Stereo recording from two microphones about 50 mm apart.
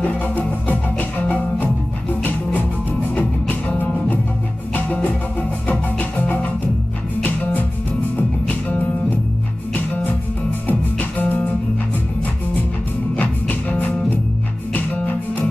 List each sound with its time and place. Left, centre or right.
0.0 s music: left
3.2 s music: left
5.7 s music: left
8.5 s music: left
10.7 s music: left
13.1 s music: left